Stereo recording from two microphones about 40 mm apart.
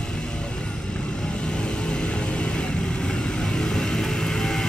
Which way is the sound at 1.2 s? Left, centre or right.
Left.